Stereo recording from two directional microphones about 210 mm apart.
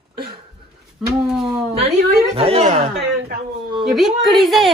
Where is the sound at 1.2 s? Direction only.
Centre (ahead or behind).